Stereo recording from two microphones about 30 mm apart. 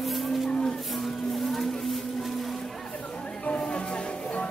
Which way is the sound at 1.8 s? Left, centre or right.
Centre.